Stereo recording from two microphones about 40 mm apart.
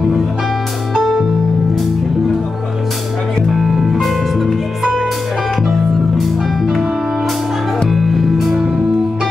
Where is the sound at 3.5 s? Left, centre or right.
Centre.